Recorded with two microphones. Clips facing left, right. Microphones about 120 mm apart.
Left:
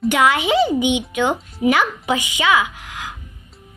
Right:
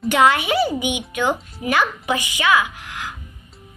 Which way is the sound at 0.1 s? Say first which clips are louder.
Right 1 dB; 15° left (ahead or behind).